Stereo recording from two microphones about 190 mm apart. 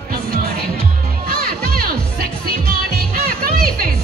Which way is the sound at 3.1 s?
50° right (ahead or behind).